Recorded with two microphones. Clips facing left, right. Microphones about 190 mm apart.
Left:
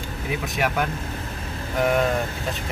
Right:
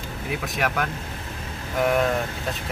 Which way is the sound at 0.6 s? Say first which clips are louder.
Left 2 dB; centre (ahead or behind).